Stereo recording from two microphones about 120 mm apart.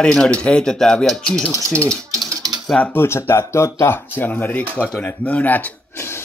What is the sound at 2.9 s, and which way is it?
Speech, 20° left (ahead or behind).